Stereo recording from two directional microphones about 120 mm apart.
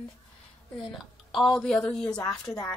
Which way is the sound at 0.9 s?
Centre (ahead or behind).